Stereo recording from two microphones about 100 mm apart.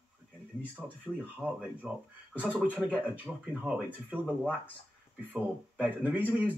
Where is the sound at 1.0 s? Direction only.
10° right (ahead or behind).